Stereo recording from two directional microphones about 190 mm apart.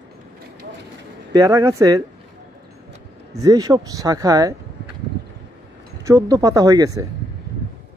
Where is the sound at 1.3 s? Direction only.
15° right (ahead or behind).